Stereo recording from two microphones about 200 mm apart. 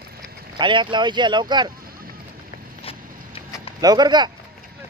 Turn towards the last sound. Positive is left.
turn(degrees=-20)  # may be behind; listen again after turning